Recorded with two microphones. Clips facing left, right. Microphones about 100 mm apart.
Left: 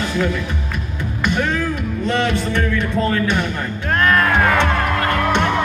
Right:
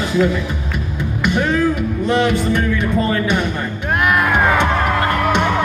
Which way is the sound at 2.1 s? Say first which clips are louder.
Right 3 dB; 15° right (ahead or behind).